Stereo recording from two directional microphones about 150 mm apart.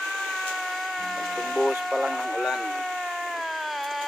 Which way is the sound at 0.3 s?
Centre (ahead or behind).